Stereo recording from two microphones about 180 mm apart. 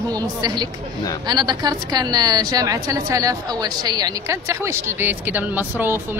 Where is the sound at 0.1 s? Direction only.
20° right (ahead or behind).